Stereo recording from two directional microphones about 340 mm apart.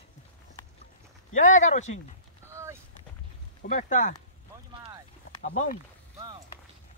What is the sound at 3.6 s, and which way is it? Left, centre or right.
Speech, left.